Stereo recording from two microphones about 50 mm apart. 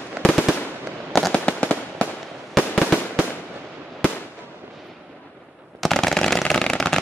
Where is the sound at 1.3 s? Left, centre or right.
Left.